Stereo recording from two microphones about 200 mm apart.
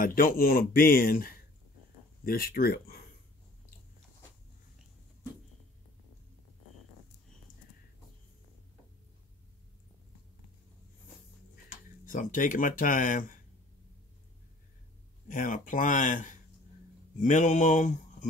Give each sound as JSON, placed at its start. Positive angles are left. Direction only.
{"t": 0.0, "sound": "speech", "side_deg": 45}
{"t": 12.1, "sound": "speech", "side_deg": 45}
{"t": 15.2, "sound": "speech", "side_deg": 40}